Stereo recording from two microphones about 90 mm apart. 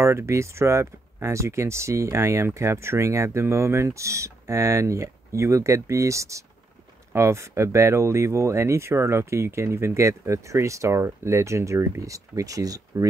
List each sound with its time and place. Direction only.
0.0 s speech: 30° right (ahead or behind)